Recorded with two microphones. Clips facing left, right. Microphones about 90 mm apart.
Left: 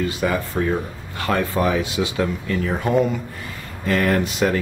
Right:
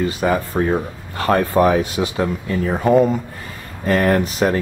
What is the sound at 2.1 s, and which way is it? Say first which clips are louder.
Speech: right 2 dB; 30° right (ahead or behind).